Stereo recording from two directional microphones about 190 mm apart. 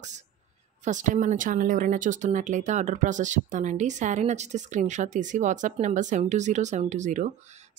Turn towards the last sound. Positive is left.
turn(degrees=-40)  # may be behind; listen again after turning